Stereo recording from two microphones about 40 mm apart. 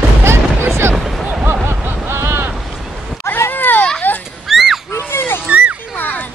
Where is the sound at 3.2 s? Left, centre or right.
Left.